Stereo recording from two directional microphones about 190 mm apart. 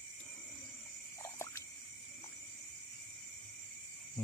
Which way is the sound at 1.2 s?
15° left (ahead or behind).